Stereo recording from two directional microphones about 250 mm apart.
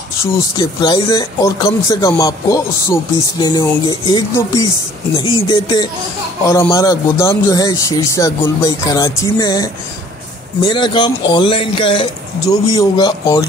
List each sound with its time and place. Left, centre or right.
0.2 s speech: centre
10.7 s speech: centre